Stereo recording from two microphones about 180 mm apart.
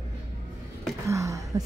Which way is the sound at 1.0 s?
15° right (ahead or behind).